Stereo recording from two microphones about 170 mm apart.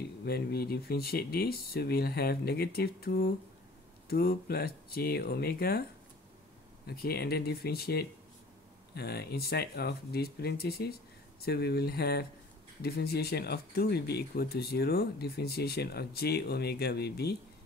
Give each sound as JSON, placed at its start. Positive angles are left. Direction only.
{"t": 0.2, "sound": "speech", "side_deg": 65}
{"t": 6.9, "sound": "speech", "side_deg": 70}